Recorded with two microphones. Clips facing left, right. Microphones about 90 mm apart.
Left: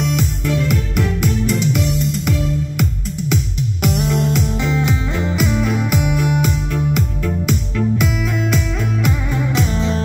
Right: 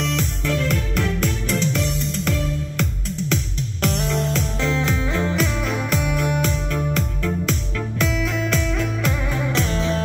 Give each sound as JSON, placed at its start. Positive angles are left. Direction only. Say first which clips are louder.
{"t": 0.0, "sound": "music", "louder": "left 4 dB", "side_deg": 15}